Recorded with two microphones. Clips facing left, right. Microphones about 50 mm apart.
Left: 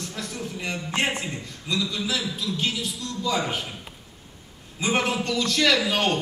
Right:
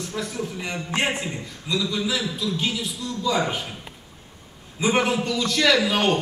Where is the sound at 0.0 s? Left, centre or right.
Centre.